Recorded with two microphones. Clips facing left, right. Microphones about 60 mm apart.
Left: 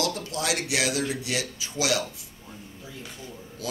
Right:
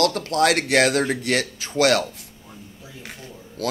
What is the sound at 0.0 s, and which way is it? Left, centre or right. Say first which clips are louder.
Speech: right 9 dB; right.